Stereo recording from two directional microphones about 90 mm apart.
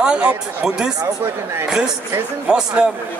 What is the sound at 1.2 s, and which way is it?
Speech, 30° right (ahead or behind).